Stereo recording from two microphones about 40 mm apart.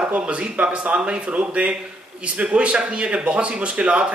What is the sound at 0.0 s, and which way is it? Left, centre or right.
A man's voice, right.